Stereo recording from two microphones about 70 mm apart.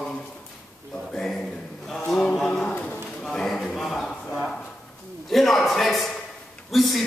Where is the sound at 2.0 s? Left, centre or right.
Centre.